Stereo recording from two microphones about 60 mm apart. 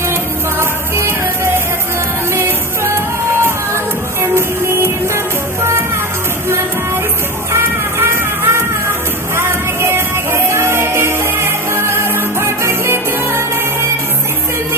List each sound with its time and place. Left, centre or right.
0.1 s music: right
7.5 s music: right